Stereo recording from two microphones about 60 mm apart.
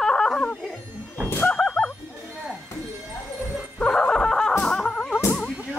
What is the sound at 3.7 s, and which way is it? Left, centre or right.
Music, centre.